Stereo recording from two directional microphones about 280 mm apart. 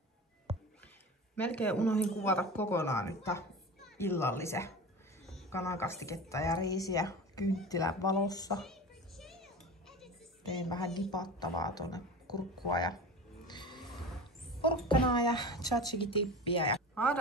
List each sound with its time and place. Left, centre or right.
0.5 s a sound: right
1.3 s speech: centre
8.6 s music: centre
11.1 s speech: centre
13.5 s music: centre
14.6 s speech: centre
16.9 s speech: centre